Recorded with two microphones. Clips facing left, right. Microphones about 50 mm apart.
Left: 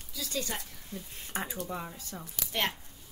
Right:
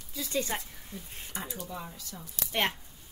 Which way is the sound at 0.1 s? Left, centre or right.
Right.